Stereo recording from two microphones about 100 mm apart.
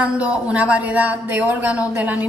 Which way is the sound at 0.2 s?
10° right (ahead or behind).